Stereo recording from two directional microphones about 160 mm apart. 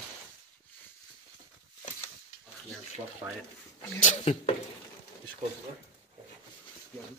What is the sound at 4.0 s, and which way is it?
Speech, 45° left (ahead or behind).